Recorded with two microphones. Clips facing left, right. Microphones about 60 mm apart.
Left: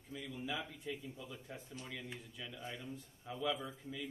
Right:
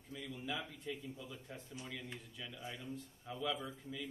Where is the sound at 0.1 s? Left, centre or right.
Centre.